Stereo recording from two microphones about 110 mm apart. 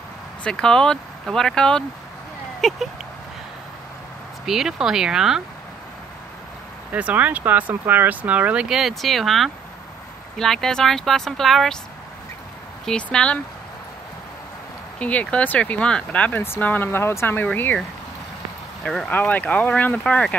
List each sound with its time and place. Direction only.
0.4 s speech: 5° left (ahead or behind)
4.5 s speech: 5° right (ahead or behind)
6.9 s speech: 15° right (ahead or behind); by 11.8 s centre (ahead or behind)
12.8 s speech: 10° left (ahead or behind)
15.0 s speech: 10° left (ahead or behind)
18.9 s speech: 5° left (ahead or behind)
19.1 s speech: 15° left (ahead or behind)